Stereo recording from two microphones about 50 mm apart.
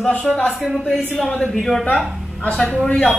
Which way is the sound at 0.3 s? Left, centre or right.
Centre.